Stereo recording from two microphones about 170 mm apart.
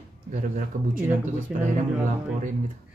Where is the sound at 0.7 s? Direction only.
40° right (ahead or behind).